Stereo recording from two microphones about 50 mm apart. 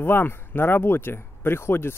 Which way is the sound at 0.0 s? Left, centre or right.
Left.